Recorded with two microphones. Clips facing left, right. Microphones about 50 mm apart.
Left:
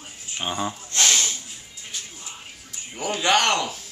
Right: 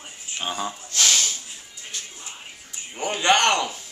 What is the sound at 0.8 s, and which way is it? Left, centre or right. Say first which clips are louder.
Snort: even; left.